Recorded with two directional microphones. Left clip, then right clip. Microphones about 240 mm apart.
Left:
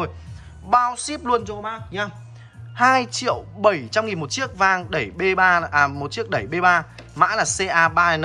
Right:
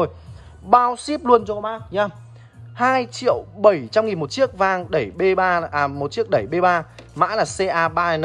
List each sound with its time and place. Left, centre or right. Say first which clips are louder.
0.7 s speech: right 3 dB; centre
2.7 s speech: left 2 dB; centre